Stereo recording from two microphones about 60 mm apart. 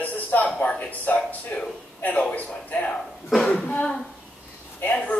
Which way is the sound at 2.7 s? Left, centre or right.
Left.